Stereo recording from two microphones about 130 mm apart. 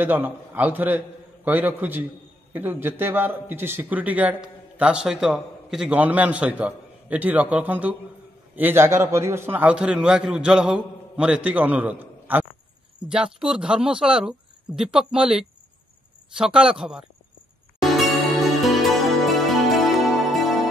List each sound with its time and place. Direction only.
0.0 s a man's voice: 15° right (ahead or behind)
16.5 s speech: 5° right (ahead or behind)
17.7 s music: centre (ahead or behind)